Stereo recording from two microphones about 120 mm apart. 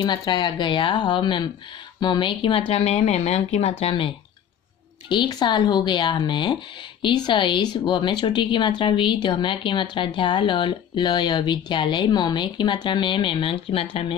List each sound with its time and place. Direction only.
0.0 s speech: 40° left (ahead or behind); by 3.9 s 65° left (ahead or behind)
5.1 s speech: 40° left (ahead or behind)